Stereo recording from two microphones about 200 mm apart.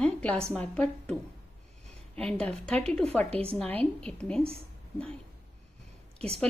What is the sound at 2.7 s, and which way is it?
A woman's voice, 5° left (ahead or behind).